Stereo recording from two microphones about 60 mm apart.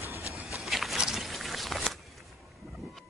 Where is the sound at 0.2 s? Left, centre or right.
Left.